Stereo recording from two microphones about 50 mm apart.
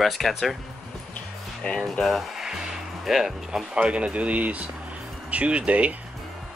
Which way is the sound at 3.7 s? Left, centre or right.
Right.